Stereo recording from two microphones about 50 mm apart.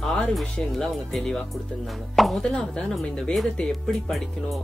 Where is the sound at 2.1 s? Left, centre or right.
Centre.